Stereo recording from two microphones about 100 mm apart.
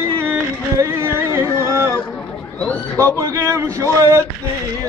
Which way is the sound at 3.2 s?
35° right (ahead or behind).